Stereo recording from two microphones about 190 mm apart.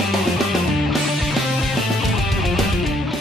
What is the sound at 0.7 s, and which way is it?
Music, centre (ahead or behind).